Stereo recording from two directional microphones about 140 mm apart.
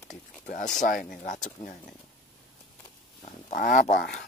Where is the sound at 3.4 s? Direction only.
65° left (ahead or behind).